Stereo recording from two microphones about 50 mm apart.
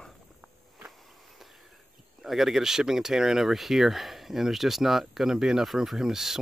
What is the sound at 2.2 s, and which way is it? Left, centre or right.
Speech, centre.